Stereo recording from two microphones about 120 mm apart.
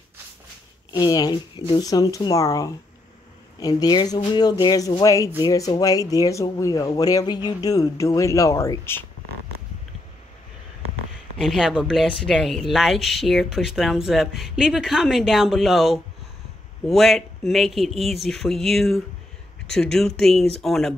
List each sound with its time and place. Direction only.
0.9 s speech: 35° left (ahead or behind)
11.3 s speech: 5° right (ahead or behind)